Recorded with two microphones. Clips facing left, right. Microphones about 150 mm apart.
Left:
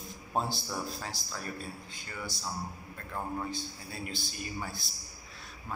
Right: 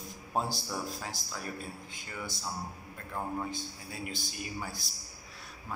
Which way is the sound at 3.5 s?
15° right (ahead or behind).